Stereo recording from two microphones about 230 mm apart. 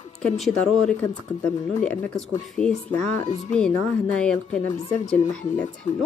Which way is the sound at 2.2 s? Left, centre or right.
Centre.